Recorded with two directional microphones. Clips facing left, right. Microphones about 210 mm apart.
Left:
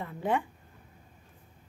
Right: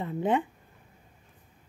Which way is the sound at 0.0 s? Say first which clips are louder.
Right 3 dB; 20° right (ahead or behind).